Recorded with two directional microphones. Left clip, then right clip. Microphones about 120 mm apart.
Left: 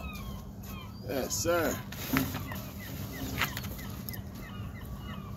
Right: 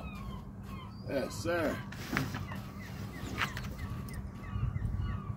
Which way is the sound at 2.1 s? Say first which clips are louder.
Left 4 dB; 30° left (ahead or behind).